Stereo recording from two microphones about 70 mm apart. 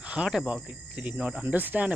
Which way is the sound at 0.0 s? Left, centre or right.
Centre.